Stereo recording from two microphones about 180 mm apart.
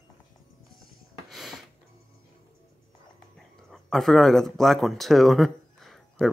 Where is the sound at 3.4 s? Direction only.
Centre (ahead or behind).